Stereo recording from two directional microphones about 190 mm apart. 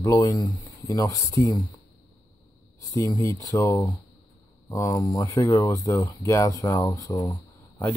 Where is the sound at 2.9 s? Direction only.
20° left (ahead or behind).